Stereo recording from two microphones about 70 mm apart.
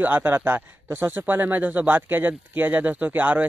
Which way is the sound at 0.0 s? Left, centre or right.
Right.